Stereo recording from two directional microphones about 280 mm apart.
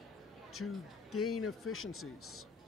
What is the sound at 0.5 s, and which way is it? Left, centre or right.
Speech, left.